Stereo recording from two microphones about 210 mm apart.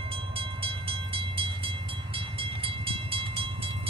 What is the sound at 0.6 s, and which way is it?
Train, 25° right (ahead or behind).